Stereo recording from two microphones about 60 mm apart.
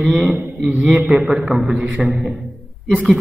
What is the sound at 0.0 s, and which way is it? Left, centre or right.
A man's voice, centre.